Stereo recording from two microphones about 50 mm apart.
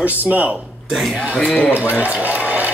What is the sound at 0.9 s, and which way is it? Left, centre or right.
Speech, centre.